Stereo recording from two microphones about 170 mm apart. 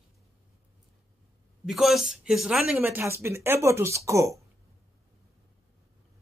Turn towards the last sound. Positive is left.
turn(degrees=-15)  # may be behind; listen again after turning